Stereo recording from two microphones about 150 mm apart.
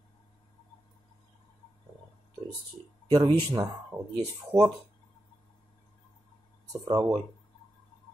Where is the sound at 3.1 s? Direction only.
25° right (ahead or behind).